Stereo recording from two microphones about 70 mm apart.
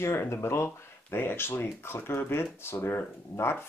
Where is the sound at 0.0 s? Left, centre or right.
Left.